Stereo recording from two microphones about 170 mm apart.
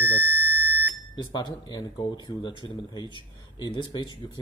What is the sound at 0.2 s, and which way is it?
Alarm, 10° left (ahead or behind).